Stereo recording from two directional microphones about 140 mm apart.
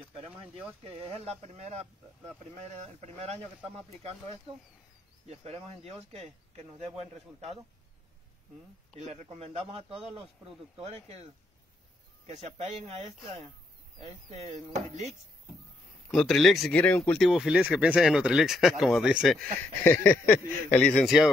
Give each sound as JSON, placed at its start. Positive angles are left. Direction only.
{"t": 0.8, "sound": "speech", "side_deg": -45}
{"t": 5.2, "sound": "speech", "side_deg": -50}
{"t": 8.9, "sound": "speech", "side_deg": -50}
{"t": 12.3, "sound": "speech", "side_deg": -55}
{"t": 16.1, "sound": "speech", "side_deg": 0}
{"t": 17.2, "sound": "speech", "side_deg": 0}
{"t": 19.3, "sound": "speech", "side_deg": 10}